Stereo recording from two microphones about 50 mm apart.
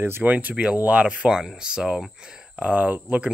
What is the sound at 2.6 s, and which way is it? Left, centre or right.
Speech, right.